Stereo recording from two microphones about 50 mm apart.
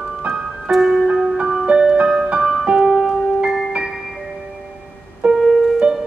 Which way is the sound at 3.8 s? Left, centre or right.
Centre.